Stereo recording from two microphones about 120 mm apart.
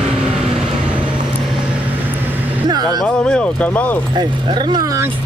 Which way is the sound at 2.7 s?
35° right (ahead or behind).